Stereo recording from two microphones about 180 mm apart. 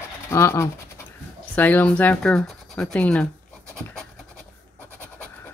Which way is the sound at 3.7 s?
5° left (ahead or behind).